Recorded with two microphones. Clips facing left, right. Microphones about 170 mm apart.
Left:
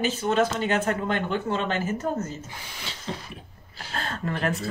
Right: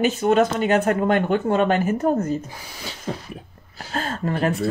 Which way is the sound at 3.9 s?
40° right (ahead or behind).